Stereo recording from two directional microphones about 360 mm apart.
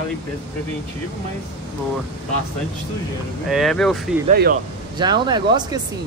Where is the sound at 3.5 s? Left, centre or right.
Centre.